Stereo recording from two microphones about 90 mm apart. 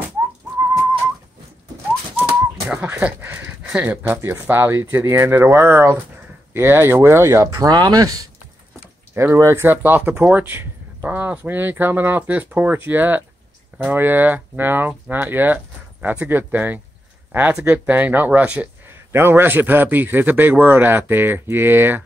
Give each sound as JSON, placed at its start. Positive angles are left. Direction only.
{"t": 2.1, "sound": "bird", "side_deg": -20}
{"t": 3.6, "sound": "speech", "side_deg": -15}
{"t": 4.1, "sound": "speech", "side_deg": -25}
{"t": 7.5, "sound": "speech", "side_deg": -45}
{"t": 9.1, "sound": "speech", "side_deg": -30}
{"t": 19.1, "sound": "speech", "side_deg": -25}